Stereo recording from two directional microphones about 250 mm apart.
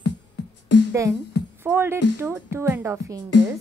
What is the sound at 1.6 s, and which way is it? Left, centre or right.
A woman's voice, centre.